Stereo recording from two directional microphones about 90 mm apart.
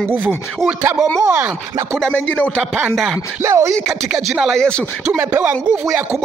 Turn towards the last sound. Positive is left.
turn(degrees=-20)  # may be behind; listen again after turning